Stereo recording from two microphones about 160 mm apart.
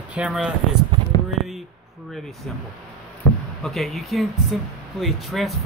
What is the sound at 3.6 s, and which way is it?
Speech, centre (ahead or behind).